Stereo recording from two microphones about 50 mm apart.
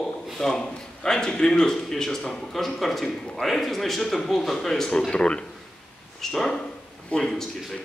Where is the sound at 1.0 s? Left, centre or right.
Centre.